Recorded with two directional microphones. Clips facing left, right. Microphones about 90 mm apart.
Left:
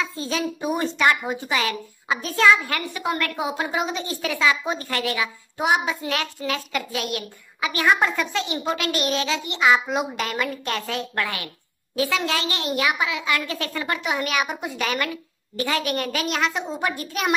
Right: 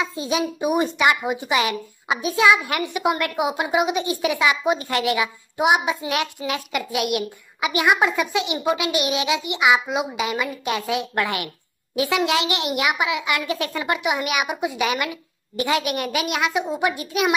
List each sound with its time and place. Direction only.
0.0 s a child's voice: 15° right (ahead or behind)